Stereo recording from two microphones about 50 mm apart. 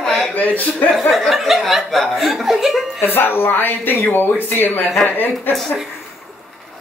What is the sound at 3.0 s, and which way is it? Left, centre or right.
Speech, left.